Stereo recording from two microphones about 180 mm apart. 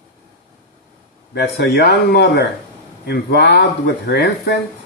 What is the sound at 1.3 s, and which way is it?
Speech, 65° left (ahead or behind).